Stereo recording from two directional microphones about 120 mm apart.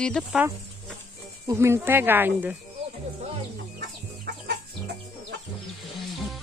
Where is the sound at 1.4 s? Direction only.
20° right (ahead or behind).